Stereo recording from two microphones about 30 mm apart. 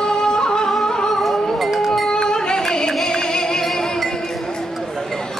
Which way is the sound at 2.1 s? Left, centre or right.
Left.